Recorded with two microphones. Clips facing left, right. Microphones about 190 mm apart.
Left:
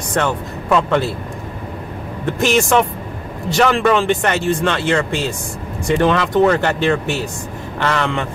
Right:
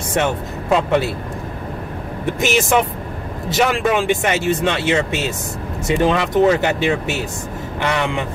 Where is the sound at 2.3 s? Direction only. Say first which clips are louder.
Left 3 dB; 5° right (ahead or behind).